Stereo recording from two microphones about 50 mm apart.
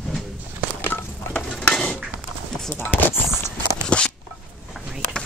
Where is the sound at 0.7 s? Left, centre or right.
Left.